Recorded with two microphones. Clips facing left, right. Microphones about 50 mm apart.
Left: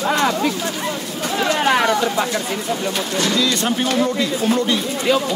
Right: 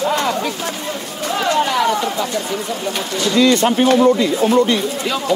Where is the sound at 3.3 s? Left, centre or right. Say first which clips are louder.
Right 10 dB; right.